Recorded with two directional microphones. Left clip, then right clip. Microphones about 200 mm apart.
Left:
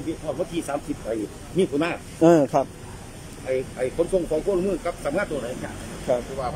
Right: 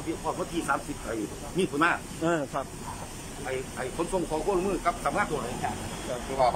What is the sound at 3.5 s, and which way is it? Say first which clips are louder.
Speech: left 8 dB; 10° left (ahead or behind).